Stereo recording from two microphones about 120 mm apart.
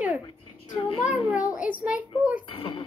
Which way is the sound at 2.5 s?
50° left (ahead or behind).